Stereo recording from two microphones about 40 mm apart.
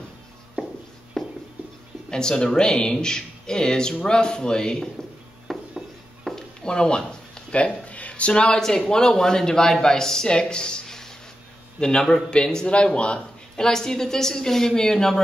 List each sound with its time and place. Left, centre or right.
1.1 s a sound: centre
2.0 s speech: centre
5.5 s a sound: centre
6.6 s speech: centre
7.5 s speech: left
8.5 s speech: centre
10.2 s a sound: left
11.8 s speech: centre
13.6 s speech: centre